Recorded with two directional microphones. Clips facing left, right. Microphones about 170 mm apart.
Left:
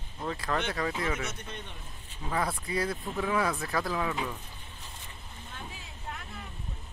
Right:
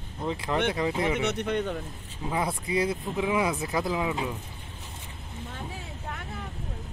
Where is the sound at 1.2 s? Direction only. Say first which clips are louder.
Right 12 dB; 70° right (ahead or behind).